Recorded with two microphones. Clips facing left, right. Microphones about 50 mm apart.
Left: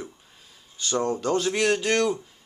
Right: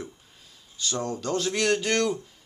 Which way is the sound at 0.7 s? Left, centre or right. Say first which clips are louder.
Left 5 dB; left.